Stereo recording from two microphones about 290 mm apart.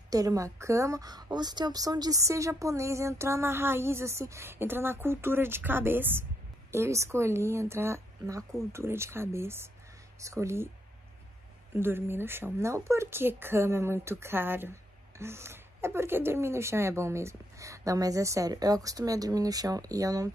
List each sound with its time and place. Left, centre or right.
0.1 s a woman's voice: centre
11.7 s a woman's voice: centre